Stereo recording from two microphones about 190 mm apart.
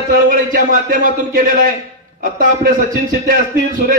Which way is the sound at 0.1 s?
45° right (ahead or behind).